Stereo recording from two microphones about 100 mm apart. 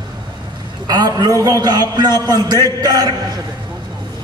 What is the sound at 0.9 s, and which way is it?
A man's voice, 40° right (ahead or behind).